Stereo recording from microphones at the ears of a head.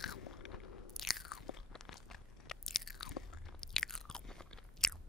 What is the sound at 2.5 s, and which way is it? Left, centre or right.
Chewing, left.